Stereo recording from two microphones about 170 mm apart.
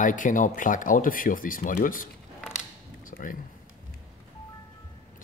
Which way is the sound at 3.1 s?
55° left (ahead or behind).